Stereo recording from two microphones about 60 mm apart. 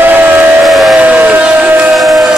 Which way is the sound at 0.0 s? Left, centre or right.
Right.